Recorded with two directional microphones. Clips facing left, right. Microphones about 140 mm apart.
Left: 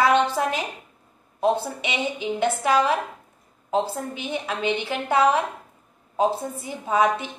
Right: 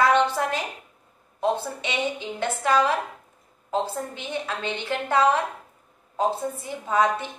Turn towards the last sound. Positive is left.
turn(degrees=15)  # may be behind; listen again after turning